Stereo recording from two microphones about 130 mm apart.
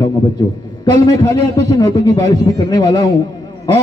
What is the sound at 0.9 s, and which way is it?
A man's voice, 30° left (ahead or behind).